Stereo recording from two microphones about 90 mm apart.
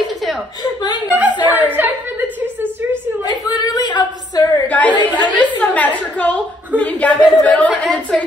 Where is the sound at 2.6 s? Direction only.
25° right (ahead or behind).